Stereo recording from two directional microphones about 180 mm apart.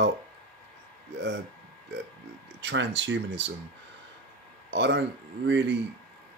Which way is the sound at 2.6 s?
80° right.